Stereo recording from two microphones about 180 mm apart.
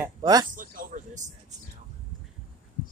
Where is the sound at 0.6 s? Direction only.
50° right (ahead or behind).